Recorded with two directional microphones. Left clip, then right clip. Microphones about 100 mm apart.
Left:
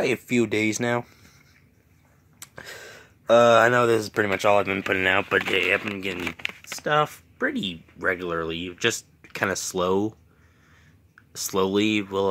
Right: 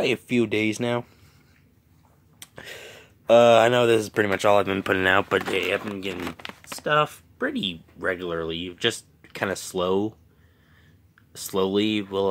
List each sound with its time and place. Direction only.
0.0 s speech: 5° right (ahead or behind)
2.4 s speech: 20° right (ahead or behind)
4.7 s speech: 50° right (ahead or behind)
5.4 s speech: centre (ahead or behind)
6.8 s speech: 10° left (ahead or behind)
11.3 s speech: 10° left (ahead or behind)